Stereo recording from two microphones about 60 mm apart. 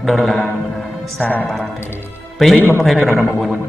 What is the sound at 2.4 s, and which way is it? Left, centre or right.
Speech, centre.